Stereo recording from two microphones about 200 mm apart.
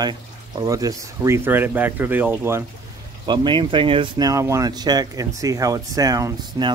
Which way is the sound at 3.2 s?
20° right (ahead or behind).